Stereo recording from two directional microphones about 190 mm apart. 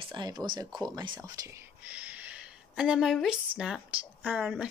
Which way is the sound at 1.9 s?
10° right (ahead or behind).